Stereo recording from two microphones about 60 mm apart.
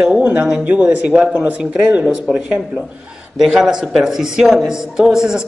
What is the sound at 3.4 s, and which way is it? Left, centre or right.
Speech, centre.